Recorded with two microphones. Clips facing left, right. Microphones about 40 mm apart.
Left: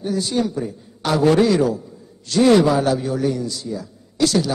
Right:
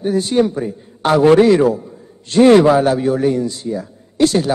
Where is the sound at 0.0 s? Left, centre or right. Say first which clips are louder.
Right 6 dB; right.